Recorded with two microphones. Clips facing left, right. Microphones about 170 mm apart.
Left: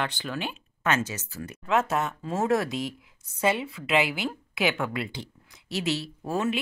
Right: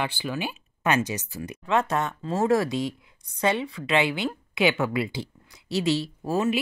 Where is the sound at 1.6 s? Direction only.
5° left (ahead or behind).